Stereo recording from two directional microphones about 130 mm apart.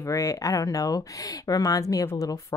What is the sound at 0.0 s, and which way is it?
Speech, 25° left (ahead or behind).